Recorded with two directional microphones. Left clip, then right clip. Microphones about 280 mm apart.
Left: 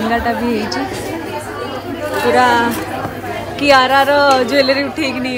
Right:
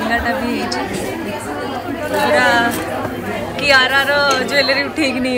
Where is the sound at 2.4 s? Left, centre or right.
Left.